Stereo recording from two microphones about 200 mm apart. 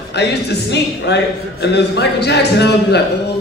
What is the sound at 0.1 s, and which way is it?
Speech, 60° left (ahead or behind).